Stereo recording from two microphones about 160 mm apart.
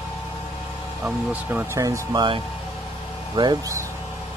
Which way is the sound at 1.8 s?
25° right (ahead or behind).